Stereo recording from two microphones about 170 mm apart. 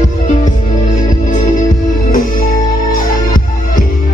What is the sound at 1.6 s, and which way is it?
Music, 55° left (ahead or behind).